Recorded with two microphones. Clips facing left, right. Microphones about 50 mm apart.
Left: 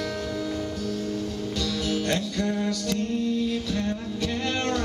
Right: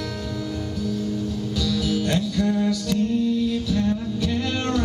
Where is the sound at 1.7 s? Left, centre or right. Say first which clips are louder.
Right 3 dB; centre.